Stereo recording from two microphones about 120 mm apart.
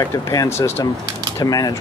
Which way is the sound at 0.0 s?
30° left (ahead or behind).